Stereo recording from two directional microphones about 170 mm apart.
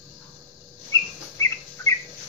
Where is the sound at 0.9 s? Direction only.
20° left (ahead or behind).